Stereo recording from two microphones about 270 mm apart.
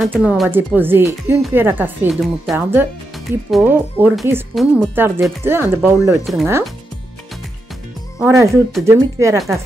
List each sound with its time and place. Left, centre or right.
0.0 s speech: centre
8.2 s speech: centre